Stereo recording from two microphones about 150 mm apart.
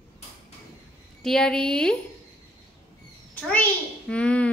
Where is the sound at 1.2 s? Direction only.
5° left (ahead or behind).